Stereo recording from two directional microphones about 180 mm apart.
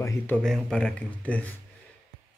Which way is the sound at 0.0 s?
5° left (ahead or behind).